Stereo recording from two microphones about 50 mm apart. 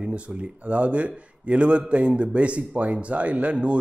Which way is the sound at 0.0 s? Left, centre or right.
Right.